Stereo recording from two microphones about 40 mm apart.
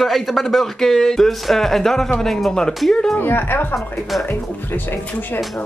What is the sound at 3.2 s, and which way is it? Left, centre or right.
Speech, left.